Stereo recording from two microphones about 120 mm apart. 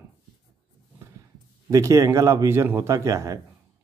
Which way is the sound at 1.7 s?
25° right (ahead or behind).